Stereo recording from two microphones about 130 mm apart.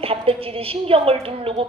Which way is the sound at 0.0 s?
45° right (ahead or behind).